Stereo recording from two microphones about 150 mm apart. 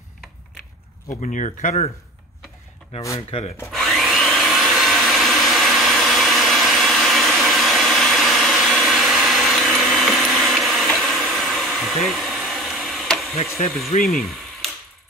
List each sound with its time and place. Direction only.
1.0 s speech: 55° left (ahead or behind)
3.2 s speech: 40° left (ahead or behind)
3.7 s wood: centre (ahead or behind)
13.6 s speech: 55° left (ahead or behind)